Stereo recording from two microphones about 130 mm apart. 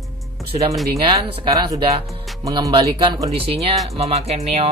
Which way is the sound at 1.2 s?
50° right (ahead or behind).